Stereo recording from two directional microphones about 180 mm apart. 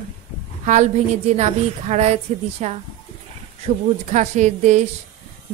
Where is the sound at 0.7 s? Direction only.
40° right (ahead or behind).